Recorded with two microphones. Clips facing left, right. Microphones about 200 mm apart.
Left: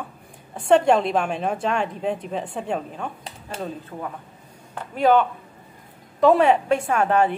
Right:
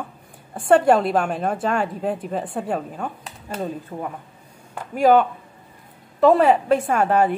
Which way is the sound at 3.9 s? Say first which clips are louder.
Right 3 dB; 30° right (ahead or behind).